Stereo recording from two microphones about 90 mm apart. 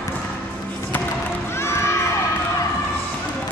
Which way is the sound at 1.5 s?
30° left (ahead or behind).